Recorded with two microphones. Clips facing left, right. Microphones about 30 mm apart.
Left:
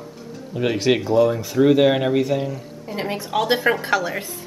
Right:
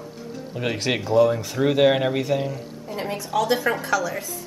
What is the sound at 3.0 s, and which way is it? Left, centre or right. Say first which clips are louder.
A woman's voice: left 1 dB; left.